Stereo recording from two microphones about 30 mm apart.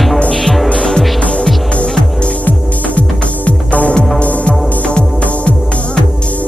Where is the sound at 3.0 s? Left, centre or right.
Left.